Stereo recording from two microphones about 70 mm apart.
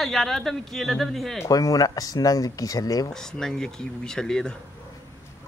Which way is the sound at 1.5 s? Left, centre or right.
Left.